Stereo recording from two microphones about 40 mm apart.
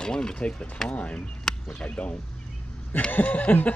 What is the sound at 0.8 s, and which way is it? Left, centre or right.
Chuckle, left.